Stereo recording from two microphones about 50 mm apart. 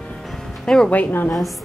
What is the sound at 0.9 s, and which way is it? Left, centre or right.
Speech, left.